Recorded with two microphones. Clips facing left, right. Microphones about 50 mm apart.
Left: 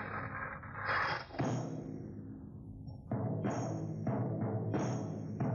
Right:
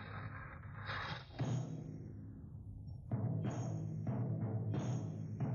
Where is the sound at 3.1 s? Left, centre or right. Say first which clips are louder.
Left 5 dB; centre.